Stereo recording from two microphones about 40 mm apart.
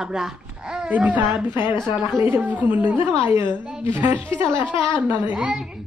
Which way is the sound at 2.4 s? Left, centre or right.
Right.